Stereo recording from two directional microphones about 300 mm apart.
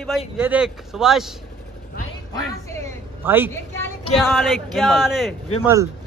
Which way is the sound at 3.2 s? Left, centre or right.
Centre.